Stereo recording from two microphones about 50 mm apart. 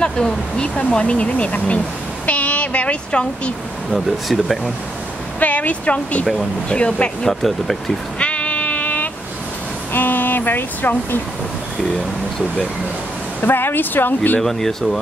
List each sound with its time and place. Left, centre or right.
0.0 s speech: centre
2.2 s vehicle: left
3.9 s speech: centre
5.4 s speech: left
7.2 s speech: centre
8.2 s sheep: left
9.9 s speech: left
13.4 s speech: left
14.4 s speech: centre